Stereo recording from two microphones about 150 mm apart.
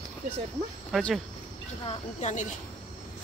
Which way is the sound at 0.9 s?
Centre (ahead or behind).